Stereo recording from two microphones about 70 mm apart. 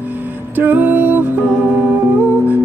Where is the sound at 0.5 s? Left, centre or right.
Right.